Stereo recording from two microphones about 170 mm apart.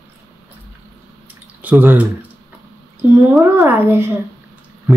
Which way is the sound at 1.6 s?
10° right (ahead or behind).